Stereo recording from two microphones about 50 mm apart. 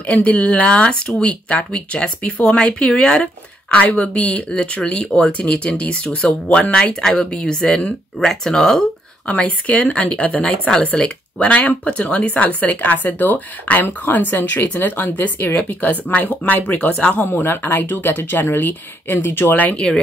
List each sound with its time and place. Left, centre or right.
0.1 s speech: left
4.5 s speech: centre
9.3 s speech: left
17.3 s speech: left
19.9 s speech: centre